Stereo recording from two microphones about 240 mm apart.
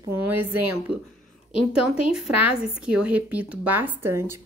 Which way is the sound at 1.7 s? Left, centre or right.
Centre.